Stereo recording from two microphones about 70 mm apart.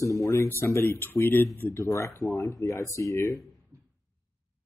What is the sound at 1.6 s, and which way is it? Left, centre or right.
Speech, left.